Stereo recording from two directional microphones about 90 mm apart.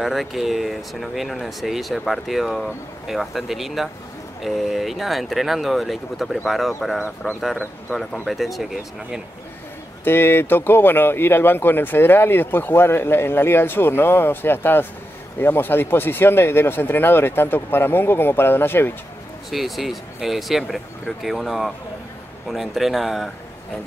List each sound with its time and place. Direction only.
0.0 s speech: centre (ahead or behind)
10.0 s speech: 25° left (ahead or behind)
19.5 s speech: centre (ahead or behind)